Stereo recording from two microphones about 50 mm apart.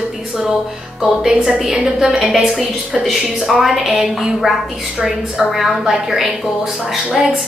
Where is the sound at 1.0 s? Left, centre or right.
Centre.